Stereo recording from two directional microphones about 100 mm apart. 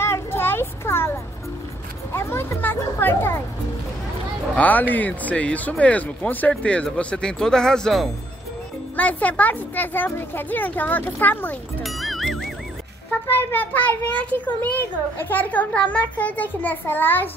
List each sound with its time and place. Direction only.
0.0 s children playing: 25° left (ahead or behind)
2.1 s a sound: 25° left (ahead or behind)
4.6 s a child's voice: 15° left (ahead or behind)
8.9 s a child's voice: 15° left (ahead or behind)
11.8 s music: centre (ahead or behind)
13.1 s a child's voice: 20° left (ahead or behind)